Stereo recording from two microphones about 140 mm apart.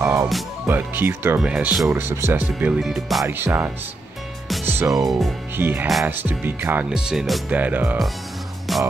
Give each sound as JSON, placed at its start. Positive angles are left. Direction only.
{"t": 0.0, "sound": "music", "side_deg": -15}
{"t": 0.7, "sound": "speech", "side_deg": -15}
{"t": 2.8, "sound": "speech", "side_deg": 0}
{"t": 3.3, "sound": "speech", "side_deg": -15}
{"t": 4.6, "sound": "music", "side_deg": -15}
{"t": 4.9, "sound": "speech", "side_deg": 0}
{"t": 5.6, "sound": "speech", "side_deg": -15}
{"t": 7.5, "sound": "speech", "side_deg": -10}
{"t": 8.7, "sound": "music", "side_deg": 0}